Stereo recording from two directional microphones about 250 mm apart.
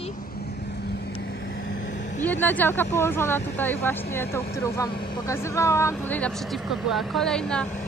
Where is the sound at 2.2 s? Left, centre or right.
Centre.